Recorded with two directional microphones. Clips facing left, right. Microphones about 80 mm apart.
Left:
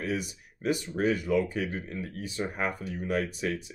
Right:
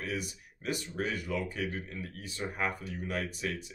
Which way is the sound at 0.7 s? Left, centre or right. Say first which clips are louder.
Left 7 dB; left.